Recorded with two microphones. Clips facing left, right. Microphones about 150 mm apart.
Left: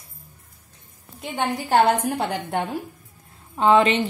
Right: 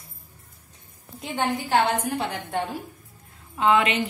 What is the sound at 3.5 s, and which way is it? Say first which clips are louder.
Speech: left 4 dB; 35° left (ahead or behind).